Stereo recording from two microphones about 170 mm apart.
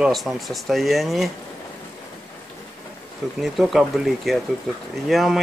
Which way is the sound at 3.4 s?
Centre (ahead or behind).